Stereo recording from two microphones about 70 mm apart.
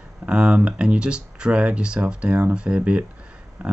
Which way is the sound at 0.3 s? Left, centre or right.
Centre.